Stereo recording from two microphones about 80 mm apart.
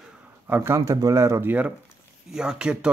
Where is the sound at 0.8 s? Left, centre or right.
Right.